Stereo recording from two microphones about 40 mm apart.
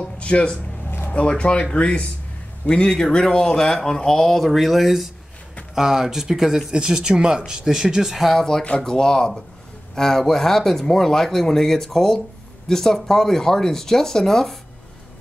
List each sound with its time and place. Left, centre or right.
0.0 s music: left
0.8 s a sound: left
1.1 s speech: left; by 6.6 s centre
6.7 s speech: centre
8.4 s speech: centre